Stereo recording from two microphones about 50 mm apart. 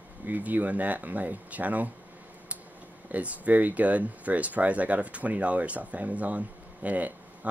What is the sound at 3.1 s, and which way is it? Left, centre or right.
Speech, right.